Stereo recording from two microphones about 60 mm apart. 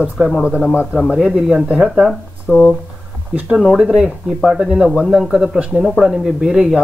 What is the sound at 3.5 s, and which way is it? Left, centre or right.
Speech, centre.